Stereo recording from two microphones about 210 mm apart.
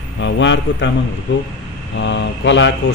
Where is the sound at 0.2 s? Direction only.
60° left (ahead or behind).